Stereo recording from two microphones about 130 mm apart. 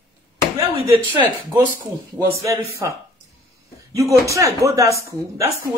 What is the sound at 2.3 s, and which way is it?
A man's voice, 25° right (ahead or behind).